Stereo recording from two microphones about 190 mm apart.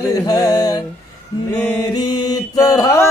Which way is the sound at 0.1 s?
20° left (ahead or behind).